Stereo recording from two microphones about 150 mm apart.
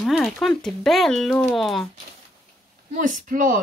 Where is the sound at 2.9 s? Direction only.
60° right (ahead or behind).